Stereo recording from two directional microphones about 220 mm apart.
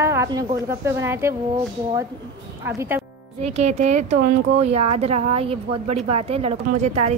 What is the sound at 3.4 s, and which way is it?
Speech, 30° right (ahead or behind).